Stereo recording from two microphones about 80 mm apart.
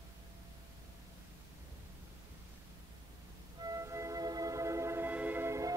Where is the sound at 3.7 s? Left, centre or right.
Right.